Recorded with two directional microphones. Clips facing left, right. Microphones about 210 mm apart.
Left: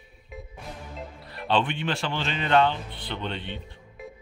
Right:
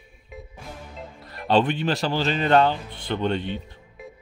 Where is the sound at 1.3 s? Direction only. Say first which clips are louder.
Right 5 dB; 40° right (ahead or behind).